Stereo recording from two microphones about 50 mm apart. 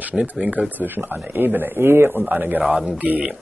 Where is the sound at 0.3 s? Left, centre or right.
Right.